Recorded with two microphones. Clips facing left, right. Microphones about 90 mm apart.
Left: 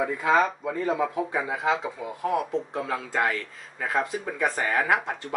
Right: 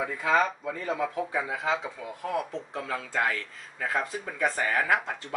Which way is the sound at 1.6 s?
10° left (ahead or behind).